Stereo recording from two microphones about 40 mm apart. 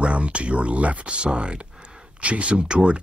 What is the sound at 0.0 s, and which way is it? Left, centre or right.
Speech, right.